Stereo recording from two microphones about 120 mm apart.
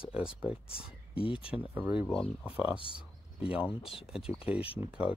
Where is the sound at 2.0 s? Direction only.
5° left (ahead or behind).